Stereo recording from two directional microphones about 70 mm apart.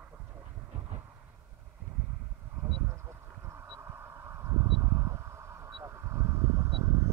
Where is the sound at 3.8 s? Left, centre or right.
Right.